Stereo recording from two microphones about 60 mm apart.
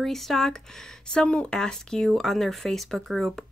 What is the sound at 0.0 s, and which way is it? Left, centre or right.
Speech, centre.